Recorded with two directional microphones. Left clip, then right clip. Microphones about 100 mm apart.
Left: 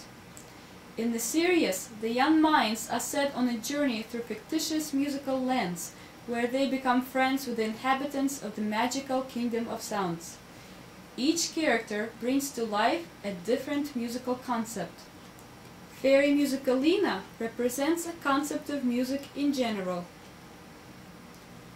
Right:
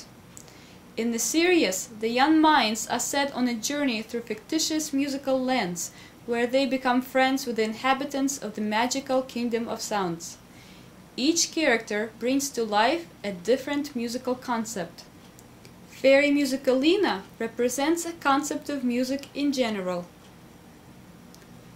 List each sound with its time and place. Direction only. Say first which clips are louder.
0.9 s a woman's voice: right 4 dB; 10° right (ahead or behind)
4.1 s speech: right 4 dB; 25° right (ahead or behind)
4.5 s a woman's voice: right 4 dB; 10° right (ahead or behind)
16.0 s a woman's voice: right 4 dB; 10° right (ahead or behind)